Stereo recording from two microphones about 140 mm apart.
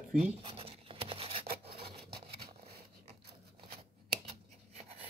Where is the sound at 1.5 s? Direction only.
90° right.